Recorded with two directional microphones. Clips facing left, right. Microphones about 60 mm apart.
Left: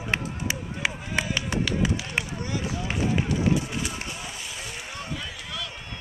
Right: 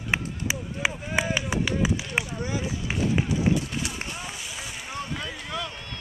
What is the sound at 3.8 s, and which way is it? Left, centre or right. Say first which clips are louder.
Run: left 1 dB; centre.